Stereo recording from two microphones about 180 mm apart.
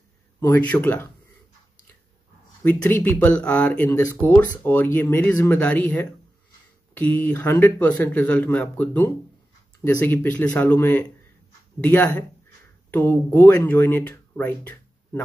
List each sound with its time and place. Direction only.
0.4 s speech: 10° left (ahead or behind)
2.6 s speech: 10° left (ahead or behind)